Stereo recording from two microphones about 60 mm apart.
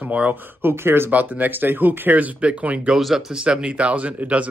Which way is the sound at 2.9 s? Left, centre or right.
Centre.